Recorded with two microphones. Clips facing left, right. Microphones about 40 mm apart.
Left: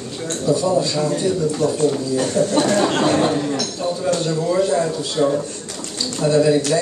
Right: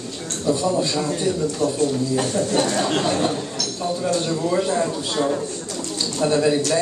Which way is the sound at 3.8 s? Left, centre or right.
Centre.